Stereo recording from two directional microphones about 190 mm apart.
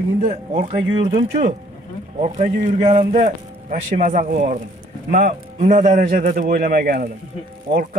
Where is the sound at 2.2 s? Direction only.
40° right (ahead or behind).